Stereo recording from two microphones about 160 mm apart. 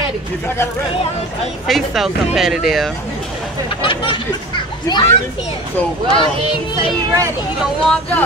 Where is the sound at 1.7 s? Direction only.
Centre (ahead or behind).